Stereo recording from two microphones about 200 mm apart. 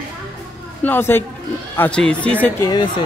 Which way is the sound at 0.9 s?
10° left (ahead or behind).